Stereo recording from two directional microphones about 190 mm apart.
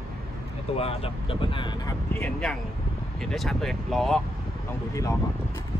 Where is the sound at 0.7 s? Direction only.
30° left (ahead or behind).